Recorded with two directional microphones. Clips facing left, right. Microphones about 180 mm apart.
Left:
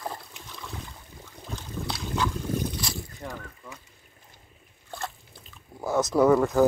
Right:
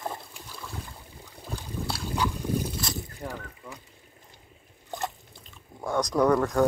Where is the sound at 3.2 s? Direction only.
10° right (ahead or behind).